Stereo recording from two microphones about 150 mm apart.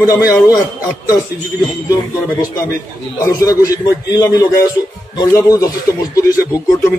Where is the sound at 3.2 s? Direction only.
25° left (ahead or behind).